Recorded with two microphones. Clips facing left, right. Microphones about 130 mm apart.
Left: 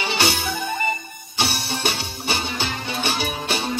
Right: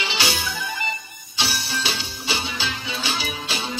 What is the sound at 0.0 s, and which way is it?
Music, 60° left (ahead or behind).